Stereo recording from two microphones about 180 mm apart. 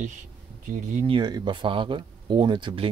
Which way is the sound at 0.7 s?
45° right (ahead or behind).